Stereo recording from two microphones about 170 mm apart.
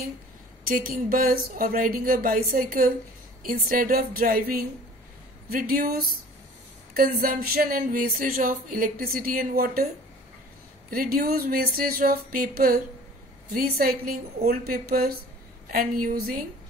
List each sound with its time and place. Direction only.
0.7 s speech: 55° right (ahead or behind)
10.9 s speech: 60° right (ahead or behind)